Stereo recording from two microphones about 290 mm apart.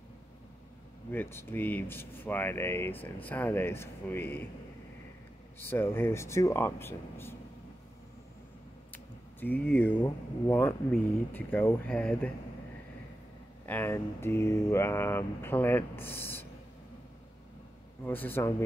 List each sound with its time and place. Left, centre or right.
1.1 s speech: centre
5.6 s speech: centre
8.9 s speech: centre
13.7 s speech: centre
18.0 s speech: centre